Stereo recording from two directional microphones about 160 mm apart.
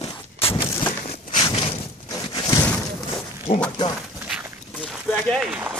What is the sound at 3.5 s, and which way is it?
Speech, 40° left (ahead or behind).